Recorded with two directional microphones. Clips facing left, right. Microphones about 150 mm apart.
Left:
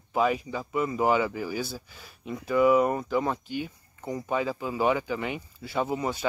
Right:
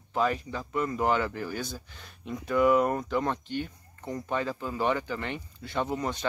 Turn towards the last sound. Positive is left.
turn(degrees=5)  # may be behind; listen again after turning